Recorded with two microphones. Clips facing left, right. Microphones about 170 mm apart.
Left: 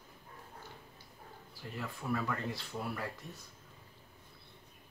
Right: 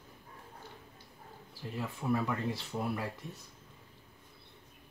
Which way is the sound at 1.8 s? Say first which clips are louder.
Right 4 dB; 20° right (ahead or behind).